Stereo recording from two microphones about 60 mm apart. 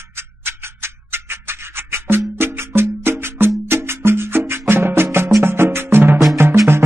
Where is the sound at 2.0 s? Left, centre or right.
Right.